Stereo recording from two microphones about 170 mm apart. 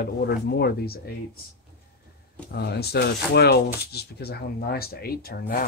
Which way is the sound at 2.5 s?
70° left (ahead or behind).